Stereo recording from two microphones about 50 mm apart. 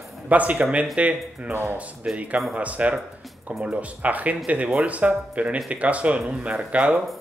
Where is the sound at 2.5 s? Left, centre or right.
Right.